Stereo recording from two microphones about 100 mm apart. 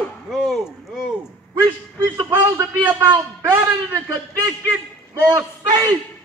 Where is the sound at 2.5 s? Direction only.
20° right (ahead or behind).